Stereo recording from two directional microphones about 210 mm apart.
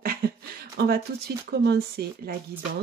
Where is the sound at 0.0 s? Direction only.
45° right (ahead or behind).